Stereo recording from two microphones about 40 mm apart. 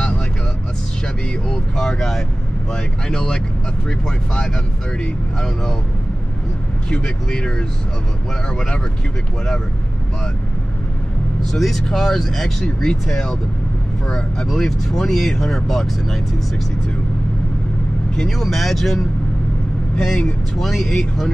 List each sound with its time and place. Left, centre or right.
1.0 s speech: centre
4.9 s speech: left
7.0 s speech: left
11.5 s speech: centre
14.0 s speech: left
14.5 s speech: centre
18.4 s speech: centre
20.0 s speech: centre
20.5 s speech: centre